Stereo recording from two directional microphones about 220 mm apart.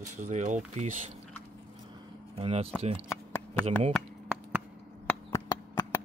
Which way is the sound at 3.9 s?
5° right (ahead or behind).